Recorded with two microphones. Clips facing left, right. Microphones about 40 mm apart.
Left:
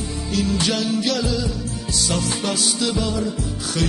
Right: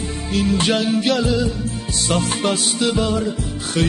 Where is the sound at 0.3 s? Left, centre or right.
Right.